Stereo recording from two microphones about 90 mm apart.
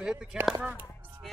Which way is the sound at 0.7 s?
20° right (ahead or behind).